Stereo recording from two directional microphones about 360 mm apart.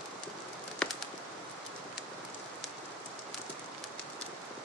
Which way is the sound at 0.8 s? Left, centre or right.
Centre.